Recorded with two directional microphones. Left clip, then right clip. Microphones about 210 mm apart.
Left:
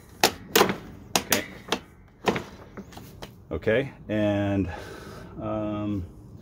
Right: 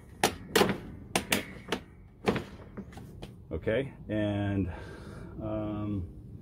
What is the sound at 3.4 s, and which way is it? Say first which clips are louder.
Speech: left 6 dB; 45° left (ahead or behind).